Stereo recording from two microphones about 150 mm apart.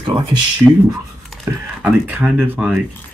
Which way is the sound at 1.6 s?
10° right (ahead or behind).